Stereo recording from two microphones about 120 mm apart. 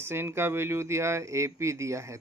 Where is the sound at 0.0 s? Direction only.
20° right (ahead or behind).